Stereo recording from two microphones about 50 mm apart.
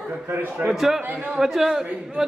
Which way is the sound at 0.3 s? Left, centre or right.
Right.